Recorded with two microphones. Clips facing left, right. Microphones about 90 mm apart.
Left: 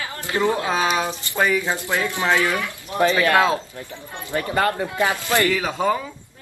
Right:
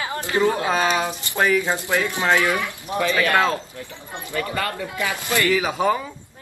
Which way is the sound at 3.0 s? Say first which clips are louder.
Left 2 dB; 30° left (ahead or behind).